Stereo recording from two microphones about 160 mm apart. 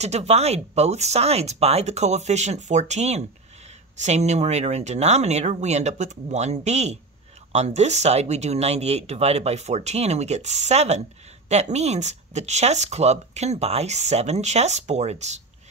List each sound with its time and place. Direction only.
0.0 s speech: 45° right (ahead or behind)